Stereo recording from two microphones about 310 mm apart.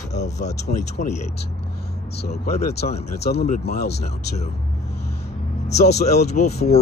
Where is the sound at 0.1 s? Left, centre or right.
Left.